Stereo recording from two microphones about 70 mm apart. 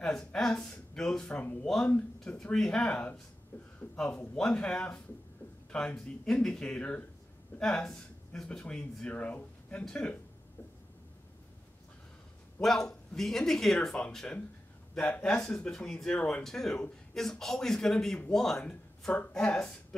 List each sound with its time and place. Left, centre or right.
0.0 s speech: centre
3.5 s a sound: left
3.9 s speech: centre
12.6 s speech: centre